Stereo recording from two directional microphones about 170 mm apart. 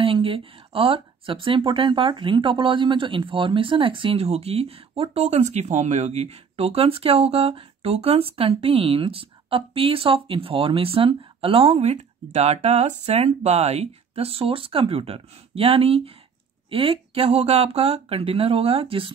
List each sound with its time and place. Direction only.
0.0 s speech: 30° right (ahead or behind)